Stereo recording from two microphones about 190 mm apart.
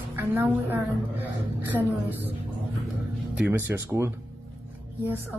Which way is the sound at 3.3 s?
5° right (ahead or behind).